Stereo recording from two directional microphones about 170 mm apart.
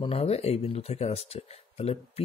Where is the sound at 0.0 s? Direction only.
35° left (ahead or behind).